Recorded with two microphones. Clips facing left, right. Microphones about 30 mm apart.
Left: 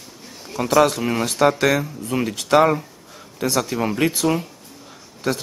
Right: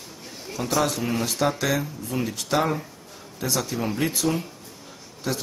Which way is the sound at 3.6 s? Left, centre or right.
Left.